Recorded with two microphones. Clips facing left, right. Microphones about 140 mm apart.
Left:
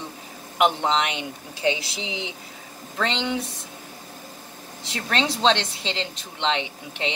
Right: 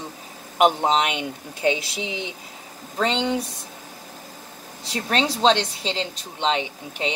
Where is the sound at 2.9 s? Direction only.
40° right (ahead or behind).